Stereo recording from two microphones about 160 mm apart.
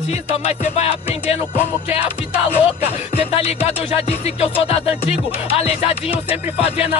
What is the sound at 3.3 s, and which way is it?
Music, 40° left (ahead or behind).